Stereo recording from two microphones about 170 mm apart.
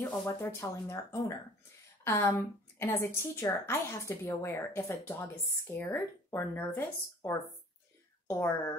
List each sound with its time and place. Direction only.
0.4 s a woman's voice: 15° left (ahead or behind)